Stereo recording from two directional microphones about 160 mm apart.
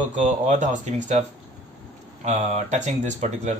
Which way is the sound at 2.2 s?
45° right (ahead or behind).